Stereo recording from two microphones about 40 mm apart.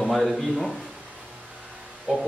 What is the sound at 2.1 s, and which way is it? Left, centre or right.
Speech, centre.